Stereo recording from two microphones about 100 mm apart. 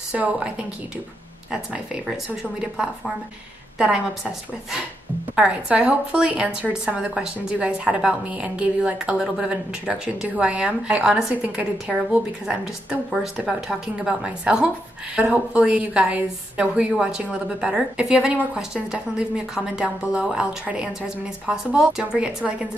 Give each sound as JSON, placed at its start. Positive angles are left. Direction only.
{"t": 0.1, "sound": "a woman's voice", "side_deg": -15}
{"t": 1.5, "sound": "a woman's voice", "side_deg": -5}
{"t": 3.7, "sound": "a woman's voice", "side_deg": -10}
{"t": 5.3, "sound": "a woman's voice", "side_deg": -10}